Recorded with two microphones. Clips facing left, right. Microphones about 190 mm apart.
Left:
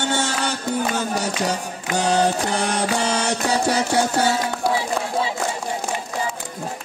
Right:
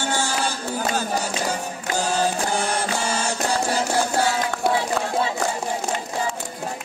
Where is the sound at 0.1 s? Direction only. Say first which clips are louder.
Left 1 dB; 65° left (ahead or behind).